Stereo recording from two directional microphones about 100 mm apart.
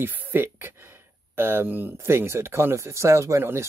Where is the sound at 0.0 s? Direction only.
20° right (ahead or behind).